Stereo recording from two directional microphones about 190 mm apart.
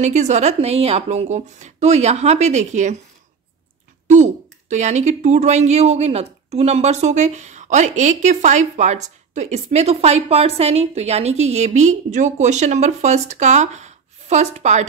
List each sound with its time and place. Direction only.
0.0 s speech: 40° right (ahead or behind)
4.1 s speech: 40° right (ahead or behind)